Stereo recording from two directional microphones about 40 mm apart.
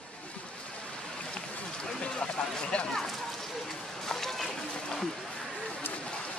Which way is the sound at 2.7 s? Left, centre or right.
Left.